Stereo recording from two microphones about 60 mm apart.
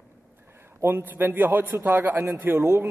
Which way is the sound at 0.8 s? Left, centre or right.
Right.